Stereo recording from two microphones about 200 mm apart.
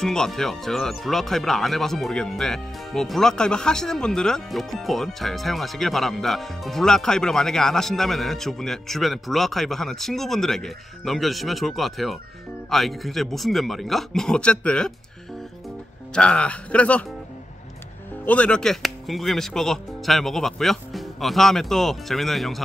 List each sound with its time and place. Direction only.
0.0 s speech: 5° left (ahead or behind)
16.2 s speech: 5° left (ahead or behind)
18.2 s speech: 5° left (ahead or behind)